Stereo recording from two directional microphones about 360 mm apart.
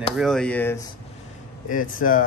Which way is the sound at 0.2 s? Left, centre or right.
Centre.